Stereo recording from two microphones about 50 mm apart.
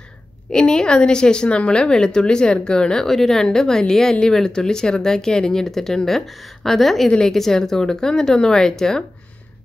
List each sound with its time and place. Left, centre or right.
0.5 s a woman's voice: centre
7.1 s a woman's voice: centre
7.3 s a woman's voice: centre